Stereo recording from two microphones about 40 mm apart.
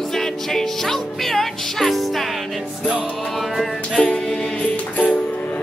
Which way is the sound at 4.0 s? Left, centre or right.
Left.